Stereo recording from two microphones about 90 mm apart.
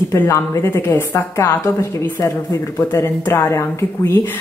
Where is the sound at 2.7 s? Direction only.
30° left (ahead or behind).